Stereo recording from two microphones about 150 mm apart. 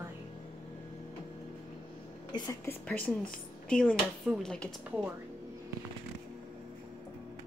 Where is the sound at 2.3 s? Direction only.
25° left (ahead or behind).